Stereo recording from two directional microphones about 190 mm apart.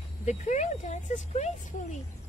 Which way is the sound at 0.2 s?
40° left (ahead or behind).